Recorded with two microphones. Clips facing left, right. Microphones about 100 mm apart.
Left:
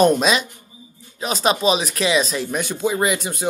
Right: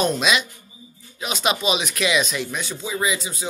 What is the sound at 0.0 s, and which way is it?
Speech, 45° left (ahead or behind).